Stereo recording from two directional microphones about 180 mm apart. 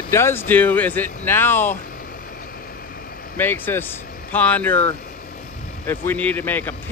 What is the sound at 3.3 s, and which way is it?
Speech, 10° left (ahead or behind).